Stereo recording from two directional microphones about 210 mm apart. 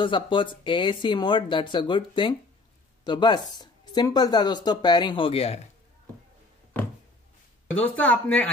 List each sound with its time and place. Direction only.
0.0 s speech: 25° left (ahead or behind)
7.7 s speech: 5° left (ahead or behind)